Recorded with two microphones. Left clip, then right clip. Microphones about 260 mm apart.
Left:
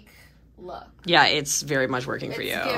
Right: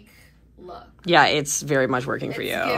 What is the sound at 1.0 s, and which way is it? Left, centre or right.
Speech, centre.